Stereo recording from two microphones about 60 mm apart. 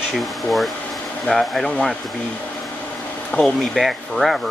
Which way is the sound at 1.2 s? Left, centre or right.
Centre.